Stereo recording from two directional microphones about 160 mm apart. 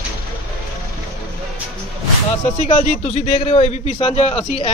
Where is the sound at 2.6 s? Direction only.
45° left (ahead or behind).